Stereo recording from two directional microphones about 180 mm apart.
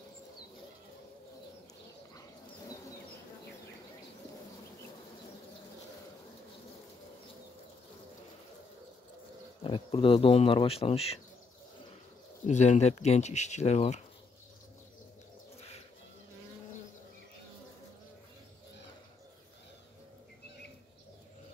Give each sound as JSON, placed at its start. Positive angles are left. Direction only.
{"t": 9.6, "sound": "speech", "side_deg": 30}
{"t": 12.4, "sound": "speech", "side_deg": 40}